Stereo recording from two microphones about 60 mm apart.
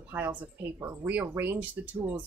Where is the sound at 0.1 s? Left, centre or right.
Right.